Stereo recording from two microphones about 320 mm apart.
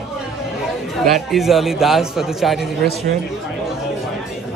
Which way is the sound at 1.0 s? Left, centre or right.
Centre.